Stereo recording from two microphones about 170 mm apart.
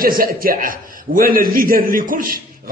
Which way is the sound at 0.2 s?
55° right (ahead or behind).